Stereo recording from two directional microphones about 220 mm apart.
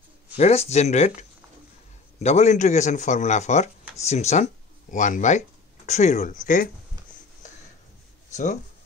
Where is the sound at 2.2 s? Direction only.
30° left (ahead or behind).